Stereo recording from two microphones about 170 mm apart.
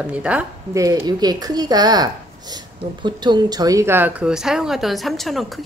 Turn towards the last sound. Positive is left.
turn(degrees=0)  # may be behind; listen again after turning